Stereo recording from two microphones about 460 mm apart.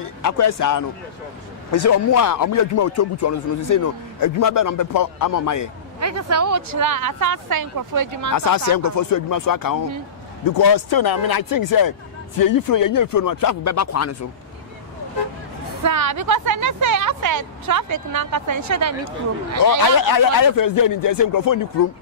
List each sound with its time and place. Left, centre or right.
0.2 s speech: left
5.9 s a woman's voice: right
8.3 s speech: left
15.8 s a woman's voice: right
19.8 s speech: left